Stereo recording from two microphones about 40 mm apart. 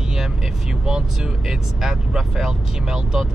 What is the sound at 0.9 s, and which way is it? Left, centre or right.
Speech, centre.